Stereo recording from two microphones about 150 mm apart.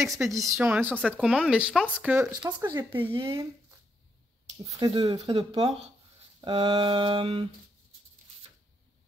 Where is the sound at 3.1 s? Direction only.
35° right (ahead or behind).